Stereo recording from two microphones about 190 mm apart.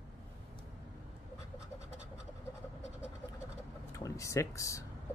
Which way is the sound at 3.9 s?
15° left (ahead or behind).